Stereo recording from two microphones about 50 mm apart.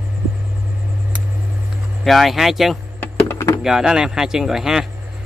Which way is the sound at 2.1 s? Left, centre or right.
Centre.